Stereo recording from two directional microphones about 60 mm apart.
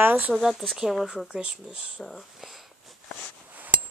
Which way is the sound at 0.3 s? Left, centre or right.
Centre.